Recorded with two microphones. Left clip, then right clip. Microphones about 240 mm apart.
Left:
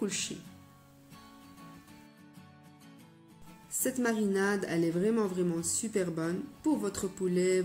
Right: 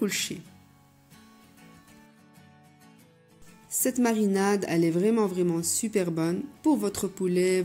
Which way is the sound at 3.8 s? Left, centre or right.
Right.